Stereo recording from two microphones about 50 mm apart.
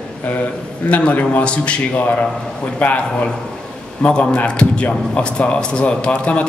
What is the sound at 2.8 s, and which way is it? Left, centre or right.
Speech, left.